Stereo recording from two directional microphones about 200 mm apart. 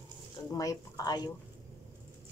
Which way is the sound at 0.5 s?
20° left (ahead or behind).